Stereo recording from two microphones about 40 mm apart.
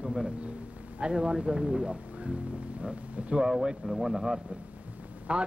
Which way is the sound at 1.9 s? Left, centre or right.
Right.